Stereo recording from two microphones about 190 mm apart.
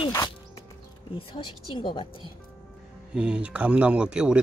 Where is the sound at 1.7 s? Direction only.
25° left (ahead or behind).